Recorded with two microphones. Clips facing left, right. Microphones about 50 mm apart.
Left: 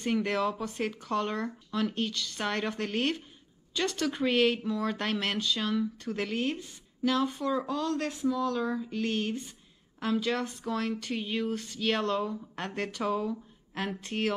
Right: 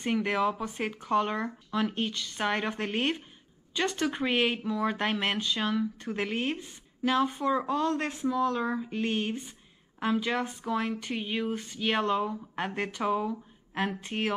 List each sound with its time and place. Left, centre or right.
0.0 s speech: centre